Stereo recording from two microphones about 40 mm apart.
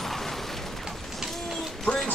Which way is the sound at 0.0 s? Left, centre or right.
Centre.